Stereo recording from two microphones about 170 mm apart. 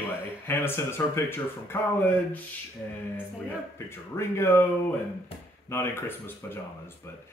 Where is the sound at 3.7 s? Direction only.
15° left (ahead or behind).